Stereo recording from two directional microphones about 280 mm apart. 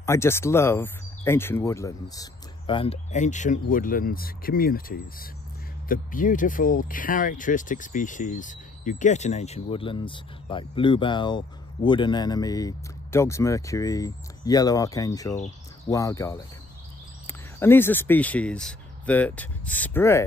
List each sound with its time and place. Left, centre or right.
0.0 s speech: centre